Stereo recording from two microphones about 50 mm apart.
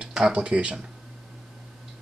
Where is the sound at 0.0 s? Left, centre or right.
Centre.